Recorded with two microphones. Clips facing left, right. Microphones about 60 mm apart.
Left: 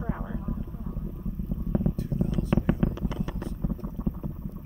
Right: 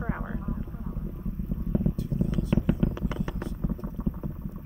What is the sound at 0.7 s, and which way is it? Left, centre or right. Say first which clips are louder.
Vehicle: even; centre.